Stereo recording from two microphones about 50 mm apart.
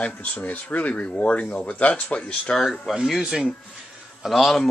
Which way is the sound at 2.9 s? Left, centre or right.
Centre.